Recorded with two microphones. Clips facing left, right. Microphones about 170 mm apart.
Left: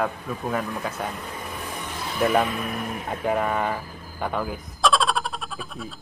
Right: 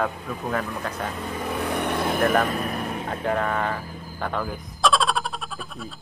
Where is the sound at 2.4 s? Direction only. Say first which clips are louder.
Right 2 dB; 40° right (ahead or behind).